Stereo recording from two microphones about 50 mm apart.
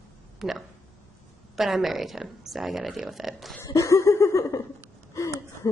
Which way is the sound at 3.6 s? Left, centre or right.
Left.